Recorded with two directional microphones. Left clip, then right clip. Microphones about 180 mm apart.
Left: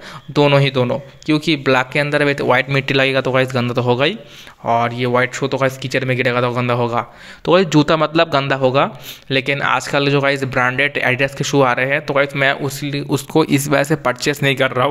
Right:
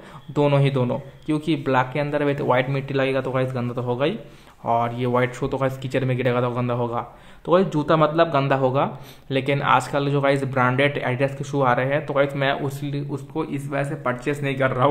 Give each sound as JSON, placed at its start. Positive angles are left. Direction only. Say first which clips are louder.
{"t": 0.3, "sound": "speech", "louder": "left 7 dB", "side_deg": 10}
{"t": 4.6, "sound": "speech", "louder": "left 5 dB", "side_deg": 10}
{"t": 13.3, "sound": "speech", "louder": "left 13 dB", "side_deg": 55}